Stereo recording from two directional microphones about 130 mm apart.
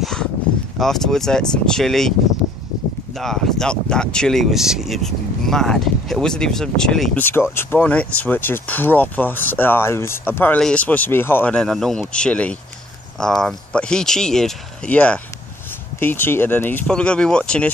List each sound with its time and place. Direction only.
0.0 s a sound: 5° left (ahead or behind)
0.7 s speech: 5° left (ahead or behind)
3.2 s speech: 5° left (ahead or behind)
7.2 s speech: 15° left (ahead or behind)